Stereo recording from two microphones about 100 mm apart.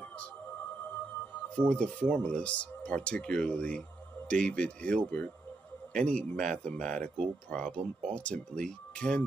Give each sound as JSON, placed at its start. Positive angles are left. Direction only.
{"t": 1.5, "sound": "speech", "side_deg": 10}